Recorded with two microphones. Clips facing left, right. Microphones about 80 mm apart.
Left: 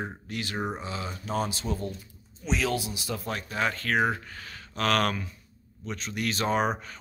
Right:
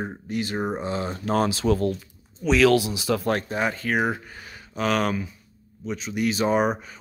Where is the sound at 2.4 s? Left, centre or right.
Right.